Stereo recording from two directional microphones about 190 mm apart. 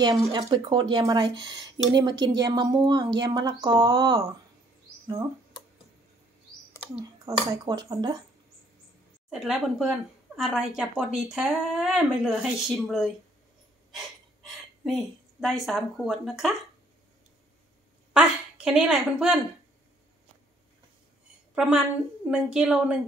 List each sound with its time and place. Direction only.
0.0 s speech: 20° right (ahead or behind)
7.2 s speech: 20° right (ahead or behind)
9.3 s a woman's voice: centre (ahead or behind)
18.1 s a woman's voice: 5° right (ahead or behind)
21.5 s speech: centre (ahead or behind)